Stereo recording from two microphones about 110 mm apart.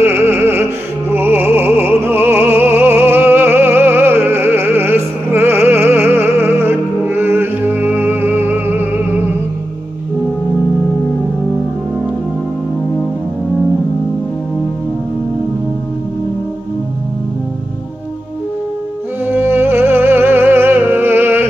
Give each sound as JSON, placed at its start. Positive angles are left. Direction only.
{"t": 0.0, "sound": "music", "side_deg": -20}
{"t": 19.2, "sound": "music", "side_deg": -20}